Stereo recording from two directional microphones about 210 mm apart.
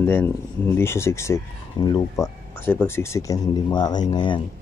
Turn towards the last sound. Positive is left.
turn(degrees=20)  # may be behind; listen again after turning